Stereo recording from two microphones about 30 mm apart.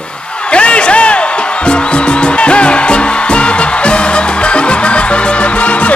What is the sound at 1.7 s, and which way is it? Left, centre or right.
Music, left.